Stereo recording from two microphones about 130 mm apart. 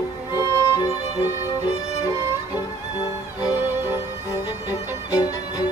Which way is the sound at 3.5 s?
15° right (ahead or behind).